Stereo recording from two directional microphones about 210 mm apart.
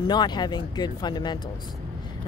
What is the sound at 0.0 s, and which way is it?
Speech, 20° left (ahead or behind).